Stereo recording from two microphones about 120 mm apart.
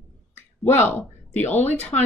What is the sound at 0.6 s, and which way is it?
Speech, 15° left (ahead or behind).